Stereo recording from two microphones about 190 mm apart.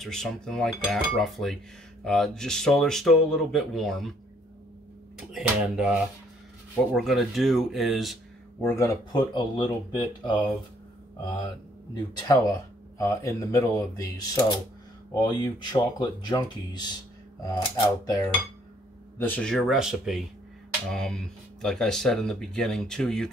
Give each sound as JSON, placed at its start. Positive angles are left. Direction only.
{"t": 0.0, "sound": "speech", "side_deg": 5}
{"t": 5.1, "sound": "speech", "side_deg": -5}
{"t": 6.9, "sound": "speech", "side_deg": 0}
{"t": 8.6, "sound": "speech", "side_deg": 15}
{"t": 11.4, "sound": "speech", "side_deg": 20}
{"t": 15.1, "sound": "speech", "side_deg": 20}